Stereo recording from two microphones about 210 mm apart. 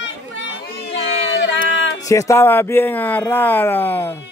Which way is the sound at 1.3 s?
60° left (ahead or behind).